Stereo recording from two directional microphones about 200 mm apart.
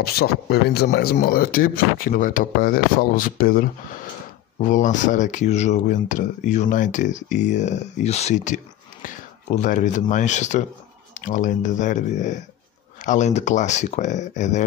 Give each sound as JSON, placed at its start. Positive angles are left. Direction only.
{"t": 0.0, "sound": "speech", "side_deg": 50}